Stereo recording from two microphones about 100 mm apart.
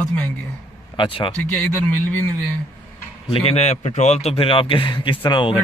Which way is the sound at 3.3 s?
85° left.